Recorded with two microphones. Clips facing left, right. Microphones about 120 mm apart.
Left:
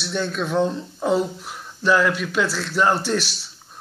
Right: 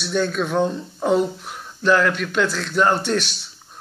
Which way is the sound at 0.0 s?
Centre (ahead or behind).